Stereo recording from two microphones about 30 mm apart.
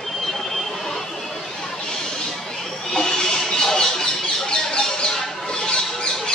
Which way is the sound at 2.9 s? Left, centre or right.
Left.